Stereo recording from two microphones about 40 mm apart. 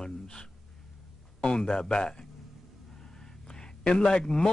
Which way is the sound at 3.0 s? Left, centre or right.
Centre.